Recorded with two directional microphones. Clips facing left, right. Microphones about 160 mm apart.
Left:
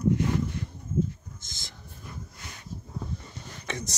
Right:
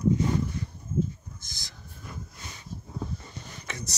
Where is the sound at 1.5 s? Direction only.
25° left (ahead or behind).